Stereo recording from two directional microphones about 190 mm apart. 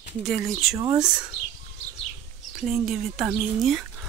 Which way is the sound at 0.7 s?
20° right (ahead or behind).